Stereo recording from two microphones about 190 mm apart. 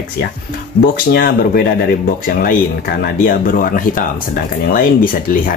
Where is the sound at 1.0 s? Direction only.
55° left (ahead or behind).